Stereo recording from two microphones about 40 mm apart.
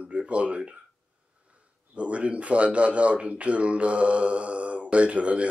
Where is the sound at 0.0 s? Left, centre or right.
Right.